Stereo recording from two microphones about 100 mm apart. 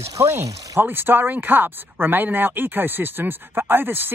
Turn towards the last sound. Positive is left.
turn(degrees=-20)  # may be behind; listen again after turning